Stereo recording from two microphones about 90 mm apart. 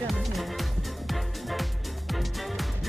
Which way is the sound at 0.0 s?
Centre (ahead or behind).